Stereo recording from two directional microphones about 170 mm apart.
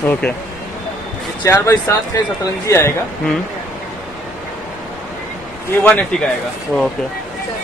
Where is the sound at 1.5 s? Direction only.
15° left (ahead or behind).